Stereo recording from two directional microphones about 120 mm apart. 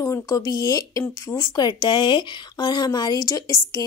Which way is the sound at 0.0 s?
25° left (ahead or behind).